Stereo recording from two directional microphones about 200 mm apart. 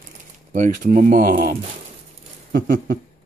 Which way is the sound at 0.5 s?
40° right (ahead or behind).